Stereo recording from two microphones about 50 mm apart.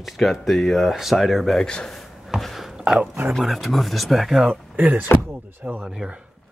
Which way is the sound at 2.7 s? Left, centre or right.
Centre.